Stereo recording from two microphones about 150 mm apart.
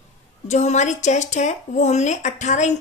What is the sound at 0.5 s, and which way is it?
Speech, 50° left (ahead or behind).